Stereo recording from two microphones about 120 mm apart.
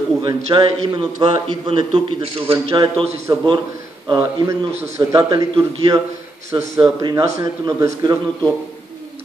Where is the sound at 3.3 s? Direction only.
35° right (ahead or behind).